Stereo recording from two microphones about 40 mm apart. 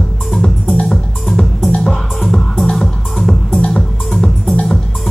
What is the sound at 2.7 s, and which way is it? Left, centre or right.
Music, centre.